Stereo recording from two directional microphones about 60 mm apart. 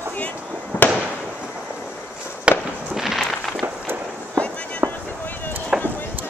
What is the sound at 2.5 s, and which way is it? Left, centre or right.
Fireworks, centre.